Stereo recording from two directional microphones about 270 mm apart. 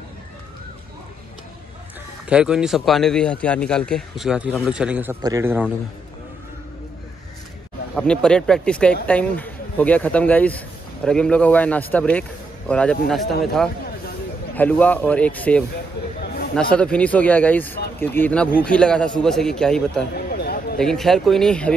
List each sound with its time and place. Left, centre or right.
2.2 s a man's voice: centre
7.9 s a man's voice: centre
20.2 s a sound: left
20.8 s a man's voice: centre